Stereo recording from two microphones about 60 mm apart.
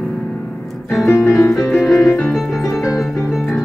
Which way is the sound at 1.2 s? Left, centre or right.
Left.